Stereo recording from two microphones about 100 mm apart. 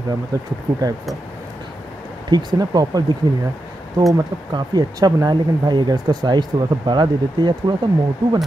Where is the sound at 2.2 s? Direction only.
45° right (ahead or behind).